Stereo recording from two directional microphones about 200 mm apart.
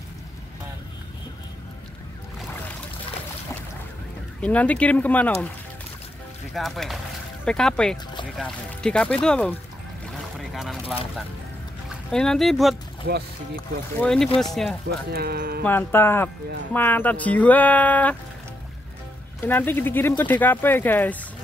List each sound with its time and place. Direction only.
4.4 s speech: 5° left (ahead or behind)
6.5 s speech: centre (ahead or behind)
10.3 s boat: centre (ahead or behind)
12.1 s speech: 5° left (ahead or behind)
13.0 s speech: 50° right (ahead or behind)
13.9 s speech: 5° left (ahead or behind)
14.9 s speech: 50° right (ahead or behind)
15.6 s speech: 10° left (ahead or behind)
19.4 s speech: 10° left (ahead or behind)